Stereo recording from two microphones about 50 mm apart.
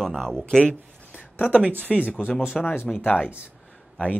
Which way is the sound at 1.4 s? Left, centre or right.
Left.